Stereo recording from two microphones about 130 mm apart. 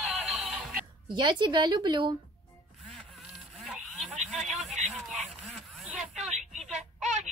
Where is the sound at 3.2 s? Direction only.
5° right (ahead or behind).